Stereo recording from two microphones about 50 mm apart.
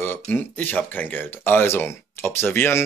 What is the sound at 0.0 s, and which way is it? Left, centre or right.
Speech, left.